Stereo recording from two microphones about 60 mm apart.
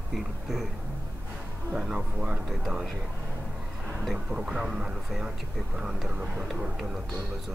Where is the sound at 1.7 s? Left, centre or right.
Centre.